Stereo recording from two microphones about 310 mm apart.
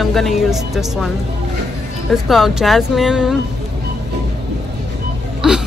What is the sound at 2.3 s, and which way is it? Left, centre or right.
Speech, centre.